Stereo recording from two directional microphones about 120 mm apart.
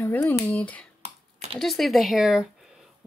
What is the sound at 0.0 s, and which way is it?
Speech, 20° left (ahead or behind).